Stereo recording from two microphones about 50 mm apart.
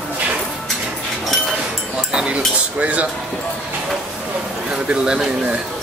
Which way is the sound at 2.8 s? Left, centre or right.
Right.